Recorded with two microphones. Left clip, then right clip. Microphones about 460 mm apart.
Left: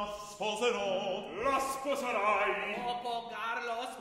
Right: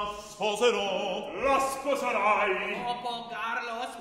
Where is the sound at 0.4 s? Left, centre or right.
Centre.